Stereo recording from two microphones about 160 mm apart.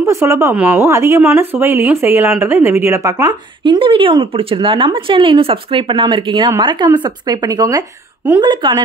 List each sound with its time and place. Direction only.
0.0 s speech: 20° right (ahead or behind)